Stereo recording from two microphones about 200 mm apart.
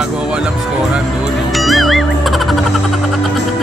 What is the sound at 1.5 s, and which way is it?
Music, centre (ahead or behind).